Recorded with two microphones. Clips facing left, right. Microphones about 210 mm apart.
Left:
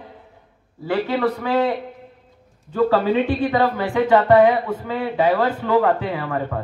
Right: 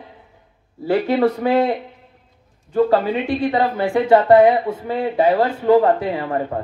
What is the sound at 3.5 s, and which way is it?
A man's voice, 30° right (ahead or behind).